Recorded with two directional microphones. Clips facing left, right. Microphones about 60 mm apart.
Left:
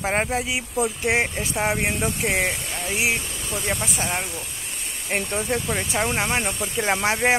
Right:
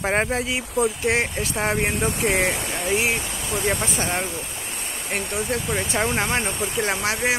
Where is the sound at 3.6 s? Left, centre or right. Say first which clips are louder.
Right 3 dB; right.